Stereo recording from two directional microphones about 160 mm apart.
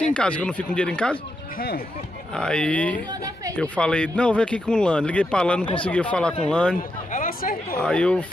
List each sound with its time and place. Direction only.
0.0 s speech: 5° left (ahead or behind)
2.3 s speech: 5° left (ahead or behind)
7.1 s chatter: 60° left (ahead or behind)
7.8 s speech: 5° left (ahead or behind)